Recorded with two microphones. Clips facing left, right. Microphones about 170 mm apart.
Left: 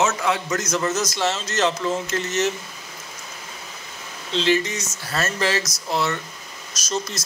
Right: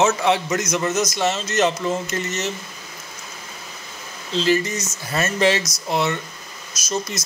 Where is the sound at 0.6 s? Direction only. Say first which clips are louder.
Right 2 dB; 10° right (ahead or behind).